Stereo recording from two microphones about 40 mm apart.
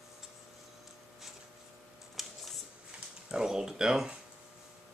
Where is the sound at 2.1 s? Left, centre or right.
Centre.